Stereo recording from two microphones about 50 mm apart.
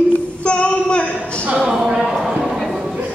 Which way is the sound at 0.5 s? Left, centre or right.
Left.